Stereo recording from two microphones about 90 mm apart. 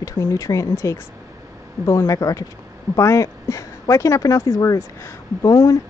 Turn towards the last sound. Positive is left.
turn(degrees=35)  # may be behind; listen again after turning